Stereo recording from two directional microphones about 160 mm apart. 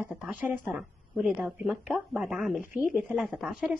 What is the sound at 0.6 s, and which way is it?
A woman's voice, 10° right (ahead or behind).